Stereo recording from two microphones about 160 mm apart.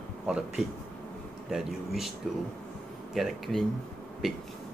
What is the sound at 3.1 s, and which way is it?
Speech, centre (ahead or behind).